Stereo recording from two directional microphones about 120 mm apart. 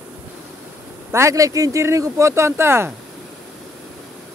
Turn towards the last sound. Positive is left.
turn(degrees=-20)  # may be behind; listen again after turning